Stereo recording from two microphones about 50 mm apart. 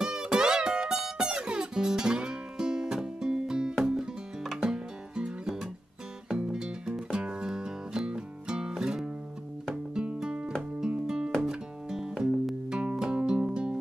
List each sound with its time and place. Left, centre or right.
0.0 s music: centre